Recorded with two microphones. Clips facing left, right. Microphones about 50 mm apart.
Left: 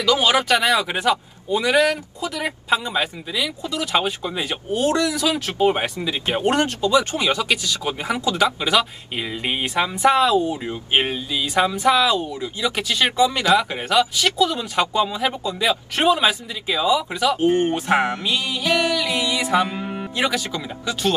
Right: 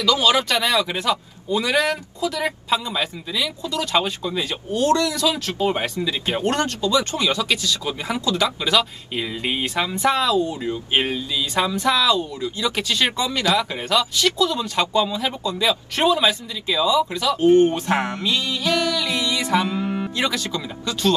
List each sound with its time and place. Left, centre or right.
0.1 s a man's voice: left